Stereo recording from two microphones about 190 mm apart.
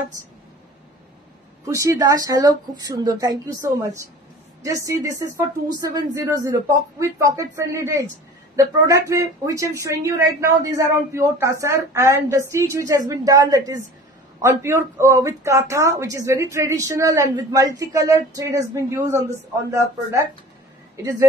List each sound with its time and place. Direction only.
1.6 s speech: 15° right (ahead or behind)
20.9 s speech: 15° right (ahead or behind)